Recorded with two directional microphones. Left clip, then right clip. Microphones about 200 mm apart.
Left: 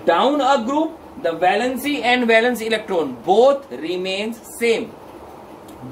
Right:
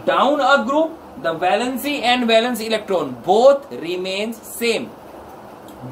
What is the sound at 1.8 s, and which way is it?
A woman's voice, 20° right (ahead or behind).